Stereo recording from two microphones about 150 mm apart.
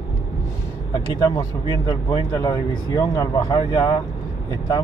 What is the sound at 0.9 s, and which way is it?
Speech, 30° left (ahead or behind).